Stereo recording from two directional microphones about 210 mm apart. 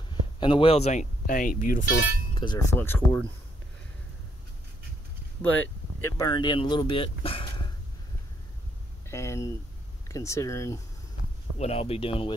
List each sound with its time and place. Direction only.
0.4 s speech: 25° left (ahead or behind)
1.2 s speech: 40° left (ahead or behind)
2.4 s speech: 20° left (ahead or behind)
6.1 s speech: 20° left (ahead or behind)
9.1 s speech: 15° left (ahead or behind)
11.5 s speech: 30° left (ahead or behind)